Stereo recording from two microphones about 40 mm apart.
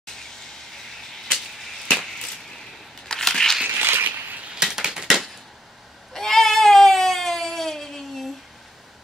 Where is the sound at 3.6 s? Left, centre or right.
Right.